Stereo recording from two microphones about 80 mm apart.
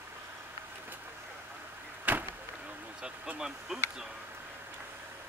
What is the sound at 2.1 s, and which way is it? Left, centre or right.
Vehicle, right.